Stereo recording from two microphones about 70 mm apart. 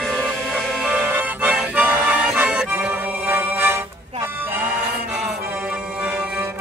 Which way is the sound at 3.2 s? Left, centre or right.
Right.